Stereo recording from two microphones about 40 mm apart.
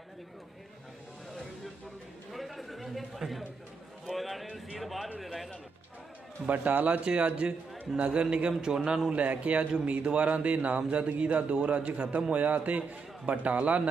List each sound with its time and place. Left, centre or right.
2.3 s a sound: centre
5.2 s music: centre
6.4 s a man's voice: right
7.1 s a man's voice: right
9.1 s a man's voice: right